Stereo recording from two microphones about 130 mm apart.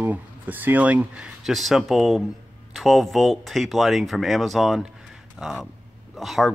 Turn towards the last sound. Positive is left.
turn(degrees=0)  # may be behind; listen again after turning